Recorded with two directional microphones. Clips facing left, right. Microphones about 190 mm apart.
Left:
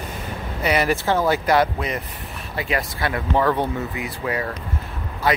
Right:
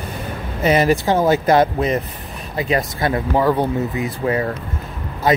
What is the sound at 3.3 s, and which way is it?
Speech, 10° right (ahead or behind).